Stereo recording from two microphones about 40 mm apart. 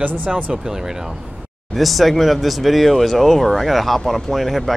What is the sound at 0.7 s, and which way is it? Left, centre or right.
Speech, centre.